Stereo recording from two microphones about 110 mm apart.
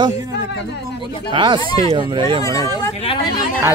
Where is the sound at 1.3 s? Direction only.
45° right (ahead or behind).